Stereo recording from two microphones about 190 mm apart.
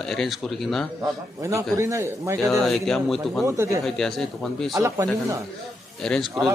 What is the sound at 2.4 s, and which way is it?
A man's voice, centre (ahead or behind).